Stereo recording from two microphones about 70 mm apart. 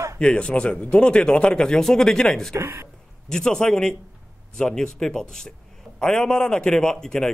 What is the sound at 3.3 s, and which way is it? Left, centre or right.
A man's voice, centre.